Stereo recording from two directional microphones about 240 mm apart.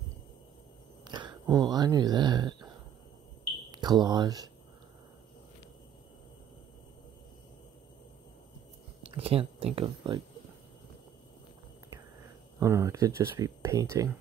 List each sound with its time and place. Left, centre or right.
1.0 s a sound: centre
1.4 s speech: centre
3.7 s speech: centre
9.0 s speech: right
12.5 s speech: centre